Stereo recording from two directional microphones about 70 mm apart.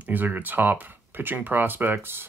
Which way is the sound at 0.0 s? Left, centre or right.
Right.